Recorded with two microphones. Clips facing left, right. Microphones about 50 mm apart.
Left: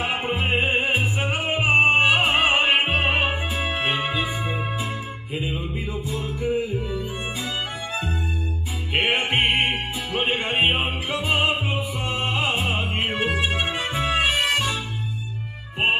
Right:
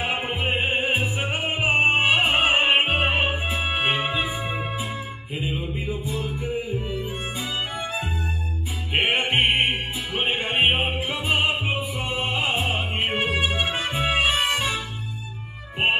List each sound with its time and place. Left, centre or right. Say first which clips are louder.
0.0 s music: left 1 dB; centre
8.9 s music: even; centre
14.4 s music: left 1 dB; right